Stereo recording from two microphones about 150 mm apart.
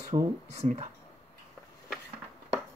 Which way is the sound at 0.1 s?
35° right (ahead or behind).